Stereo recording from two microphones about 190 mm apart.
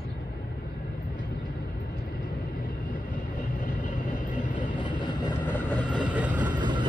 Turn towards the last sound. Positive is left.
turn(degrees=-25)  # may be behind; listen again after turning